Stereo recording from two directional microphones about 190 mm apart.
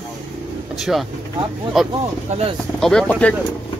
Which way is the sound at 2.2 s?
35° right (ahead or behind).